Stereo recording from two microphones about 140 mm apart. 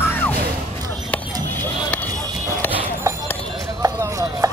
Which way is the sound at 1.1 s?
10° left (ahead or behind).